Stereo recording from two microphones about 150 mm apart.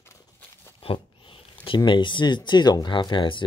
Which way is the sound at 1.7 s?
30° left (ahead or behind).